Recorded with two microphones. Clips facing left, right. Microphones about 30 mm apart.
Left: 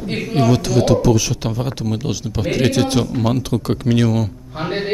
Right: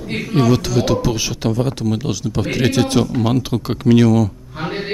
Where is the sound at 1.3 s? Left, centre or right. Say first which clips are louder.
Right 4 dB; centre.